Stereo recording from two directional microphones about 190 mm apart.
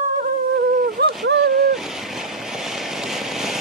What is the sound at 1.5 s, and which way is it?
Vehicle, centre (ahead or behind).